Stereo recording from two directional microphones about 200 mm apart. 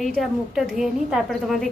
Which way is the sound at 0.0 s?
Centre (ahead or behind).